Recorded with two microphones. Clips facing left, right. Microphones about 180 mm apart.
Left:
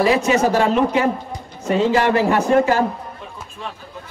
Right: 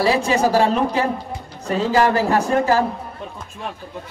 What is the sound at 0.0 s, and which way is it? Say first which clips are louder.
A man's voice: left 2 dB; 35° right (ahead or behind).